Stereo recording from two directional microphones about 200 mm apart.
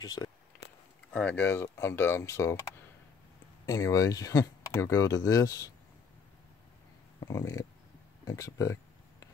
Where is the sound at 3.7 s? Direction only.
15° left (ahead or behind).